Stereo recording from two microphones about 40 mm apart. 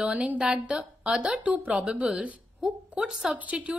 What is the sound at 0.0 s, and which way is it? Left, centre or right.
Speech, right.